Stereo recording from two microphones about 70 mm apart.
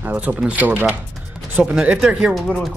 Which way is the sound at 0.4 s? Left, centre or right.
Right.